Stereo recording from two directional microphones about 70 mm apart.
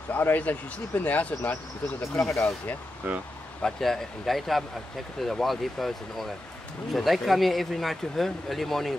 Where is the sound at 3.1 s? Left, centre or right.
Right.